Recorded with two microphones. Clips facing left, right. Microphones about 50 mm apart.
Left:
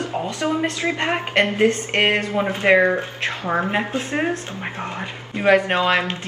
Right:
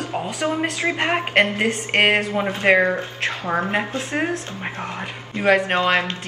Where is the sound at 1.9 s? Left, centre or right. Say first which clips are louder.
Right 1 dB; right.